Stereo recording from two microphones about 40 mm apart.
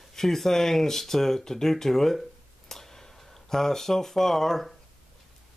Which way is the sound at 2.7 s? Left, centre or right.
Centre.